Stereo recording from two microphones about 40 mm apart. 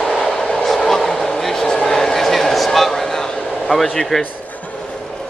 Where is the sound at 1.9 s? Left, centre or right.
Centre.